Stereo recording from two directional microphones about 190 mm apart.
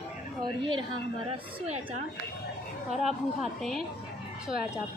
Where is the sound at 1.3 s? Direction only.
35° right (ahead or behind).